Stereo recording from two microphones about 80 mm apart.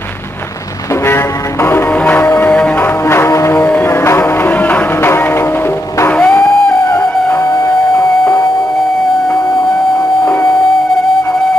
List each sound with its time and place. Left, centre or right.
1.0 s music: left
2.5 s music: centre
2.8 s music: left
3.5 s music: left
6.0 s music: left
6.4 s music: left
10.2 s music: left